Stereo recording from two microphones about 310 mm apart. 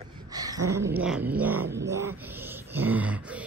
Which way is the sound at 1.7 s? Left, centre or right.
Centre.